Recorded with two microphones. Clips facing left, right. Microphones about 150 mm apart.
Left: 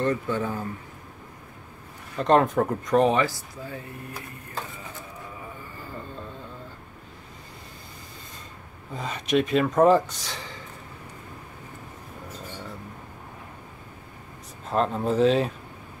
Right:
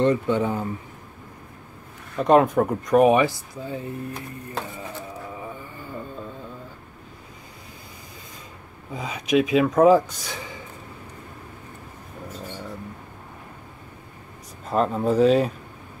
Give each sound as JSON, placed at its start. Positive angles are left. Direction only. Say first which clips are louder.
{"t": 0.0, "sound": "speech", "louder": "right 5 dB", "side_deg": -20}
{"t": 2.1, "sound": "speech", "louder": "right 3 dB", "side_deg": -5}
{"t": 8.9, "sound": "speech", "louder": "right 3 dB", "side_deg": -5}
{"t": 14.7, "sound": "speech", "louder": "right 3 dB", "side_deg": -5}